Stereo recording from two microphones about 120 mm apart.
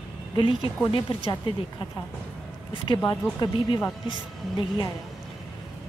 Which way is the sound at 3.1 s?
35° left (ahead or behind).